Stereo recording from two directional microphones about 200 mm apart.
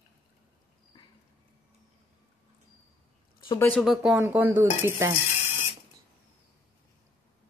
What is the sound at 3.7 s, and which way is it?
Speech, centre (ahead or behind).